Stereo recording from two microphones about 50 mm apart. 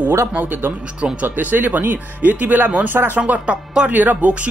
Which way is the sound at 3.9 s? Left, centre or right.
Right.